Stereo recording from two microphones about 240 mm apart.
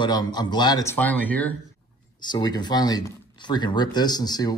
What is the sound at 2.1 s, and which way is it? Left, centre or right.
Speech, centre.